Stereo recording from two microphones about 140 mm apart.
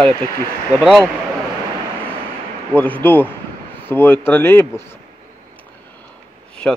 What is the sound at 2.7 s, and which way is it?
Speech, 10° left (ahead or behind).